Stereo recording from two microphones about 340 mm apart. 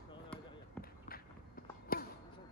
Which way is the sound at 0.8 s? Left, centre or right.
Left.